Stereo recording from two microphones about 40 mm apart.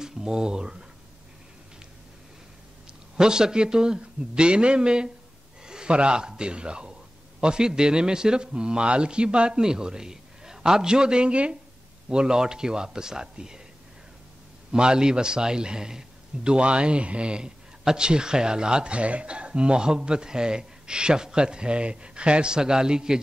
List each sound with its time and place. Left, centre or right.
0.0 s speech: centre
3.2 s a man's voice: centre
14.7 s a man's voice: right
16.5 s a man's voice: right